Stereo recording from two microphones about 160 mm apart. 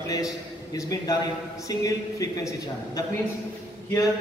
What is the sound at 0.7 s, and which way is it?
A man's voice, 20° left (ahead or behind).